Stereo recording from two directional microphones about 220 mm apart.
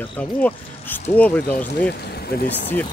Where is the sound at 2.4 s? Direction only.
10° left (ahead or behind).